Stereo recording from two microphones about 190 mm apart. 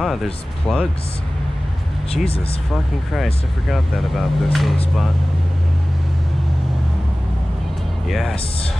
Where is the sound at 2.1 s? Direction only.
30° left (ahead or behind).